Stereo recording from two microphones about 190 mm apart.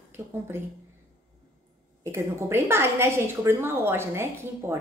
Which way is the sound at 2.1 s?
15° right (ahead or behind).